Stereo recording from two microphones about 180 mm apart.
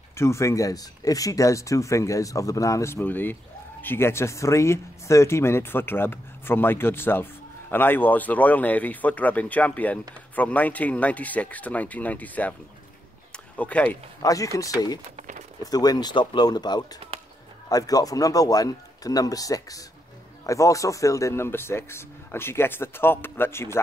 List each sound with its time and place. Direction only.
0.1 s speech: 15° left (ahead or behind)
13.6 s speech: 10° left (ahead or behind)
14.2 s speech: 20° left (ahead or behind)
15.1 s a sound: 40° right (ahead or behind)
15.6 s speech: 20° left (ahead or behind)